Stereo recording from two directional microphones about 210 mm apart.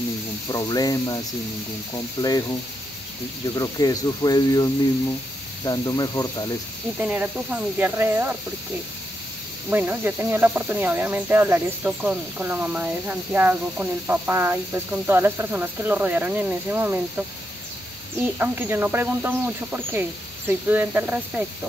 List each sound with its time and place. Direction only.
0.5 s speech: 15° left (ahead or behind)
3.5 s speech: 15° left (ahead or behind)
5.7 s speech: 15° left (ahead or behind)
7.0 s speech: 5° right (ahead or behind)
9.7 s speech: 10° right (ahead or behind)
18.2 s speech: 10° right (ahead or behind)